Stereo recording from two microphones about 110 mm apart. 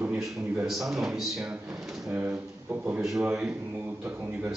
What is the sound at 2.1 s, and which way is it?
Speech, 15° right (ahead or behind).